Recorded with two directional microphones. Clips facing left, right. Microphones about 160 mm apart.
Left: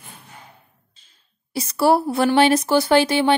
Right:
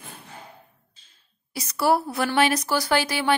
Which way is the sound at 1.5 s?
30° left (ahead or behind).